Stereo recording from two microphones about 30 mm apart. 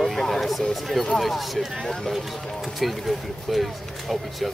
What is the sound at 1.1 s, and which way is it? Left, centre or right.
Speech, centre.